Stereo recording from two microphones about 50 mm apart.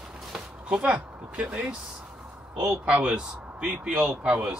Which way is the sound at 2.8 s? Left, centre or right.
Right.